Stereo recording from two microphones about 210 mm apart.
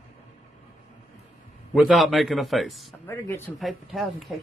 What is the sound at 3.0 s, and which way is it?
Speech, 10° left (ahead or behind).